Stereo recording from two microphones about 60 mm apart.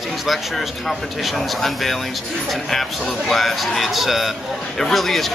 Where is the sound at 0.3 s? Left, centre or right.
Centre.